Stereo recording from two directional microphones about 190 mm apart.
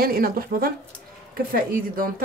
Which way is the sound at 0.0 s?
50° right (ahead or behind).